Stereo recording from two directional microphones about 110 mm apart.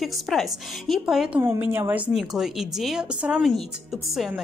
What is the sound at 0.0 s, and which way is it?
Speech, centre (ahead or behind).